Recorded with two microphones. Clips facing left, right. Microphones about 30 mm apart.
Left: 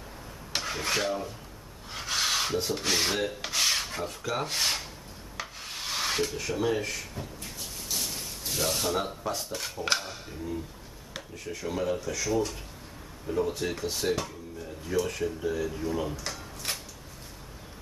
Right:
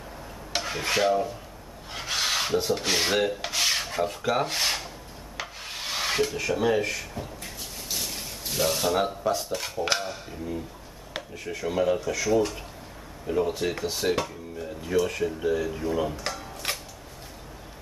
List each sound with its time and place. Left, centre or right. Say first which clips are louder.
0.5 s filing: right 2 dB; centre
1.9 s rub: right 1 dB; centre
4.2 s speech: right 2 dB; centre
5.4 s rub: right 2 dB; centre
8.5 s speech: right 4 dB; centre
16.7 s a sound: right 3 dB; right